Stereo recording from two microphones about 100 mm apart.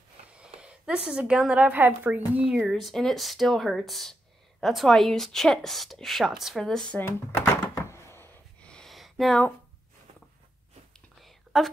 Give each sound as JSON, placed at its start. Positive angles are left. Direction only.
{"t": 0.3, "sound": "a woman's voice", "side_deg": -10}
{"t": 2.7, "sound": "speech", "side_deg": 0}
{"t": 7.0, "sound": "speech", "side_deg": 20}
{"t": 7.7, "sound": "a sound", "side_deg": 25}
{"t": 8.6, "sound": "a sound", "side_deg": 5}
{"t": 11.2, "sound": "whispering", "side_deg": 0}